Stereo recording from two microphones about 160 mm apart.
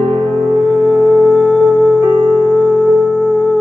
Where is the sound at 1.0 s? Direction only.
5° right (ahead or behind).